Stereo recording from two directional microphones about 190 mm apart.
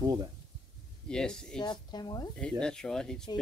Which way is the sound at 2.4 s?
5° left (ahead or behind).